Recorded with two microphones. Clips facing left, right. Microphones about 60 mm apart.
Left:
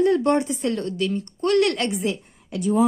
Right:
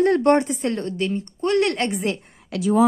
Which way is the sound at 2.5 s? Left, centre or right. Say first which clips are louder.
Right 2 dB; right.